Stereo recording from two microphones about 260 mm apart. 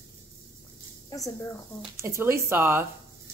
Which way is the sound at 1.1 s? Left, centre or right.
Centre.